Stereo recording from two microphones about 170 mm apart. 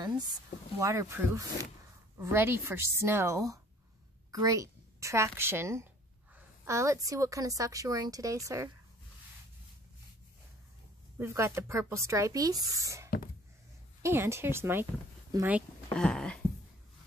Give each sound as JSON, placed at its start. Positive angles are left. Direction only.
{"t": 0.7, "sound": "a woman's voice", "side_deg": -20}
{"t": 11.1, "sound": "speech", "side_deg": -15}
{"t": 15.9, "sound": "a sound", "side_deg": 5}